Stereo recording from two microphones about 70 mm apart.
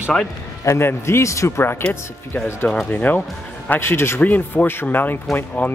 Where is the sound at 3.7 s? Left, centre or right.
Left.